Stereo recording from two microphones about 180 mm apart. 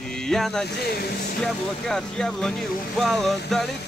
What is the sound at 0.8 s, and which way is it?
Speech, 60° left (ahead or behind).